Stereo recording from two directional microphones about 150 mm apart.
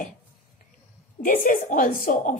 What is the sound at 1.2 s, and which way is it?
Speech, 65° left (ahead or behind).